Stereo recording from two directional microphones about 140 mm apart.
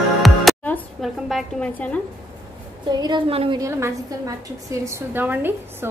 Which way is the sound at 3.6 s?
20° right (ahead or behind).